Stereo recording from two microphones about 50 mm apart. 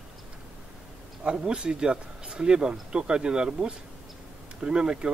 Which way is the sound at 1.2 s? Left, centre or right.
Centre.